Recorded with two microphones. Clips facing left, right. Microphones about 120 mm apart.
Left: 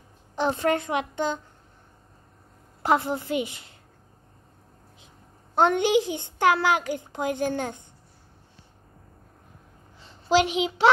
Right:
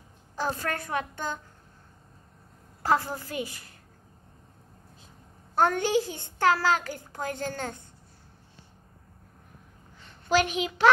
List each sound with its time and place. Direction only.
0.4 s a woman's voice: 20° left (ahead or behind)
2.8 s a woman's voice: 20° left (ahead or behind)
5.0 s a child's voice: 20° left (ahead or behind)
10.0 s a child's voice: 25° left (ahead or behind)